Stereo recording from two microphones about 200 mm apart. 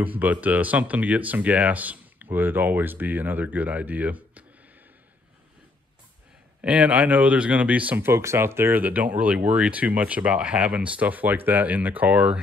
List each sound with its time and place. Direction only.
0.0 s speech: 10° right (ahead or behind)
6.6 s speech: 5° right (ahead or behind)